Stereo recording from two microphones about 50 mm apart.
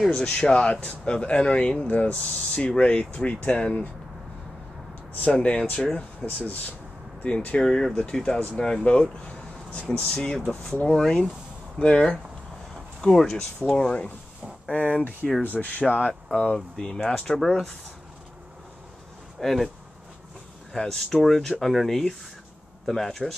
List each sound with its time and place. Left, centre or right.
0.1 s speech: centre
5.3 s speech: centre
6.2 s speech: centre
7.2 s speech: left
11.8 s speech: left
13.0 s speech: centre
13.7 s speech: centre
14.7 s speech: left
16.5 s speech: centre
19.4 s speech: centre
20.7 s speech: centre